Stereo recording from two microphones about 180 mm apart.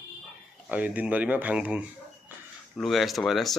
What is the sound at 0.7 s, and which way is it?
Speech, 10° right (ahead or behind).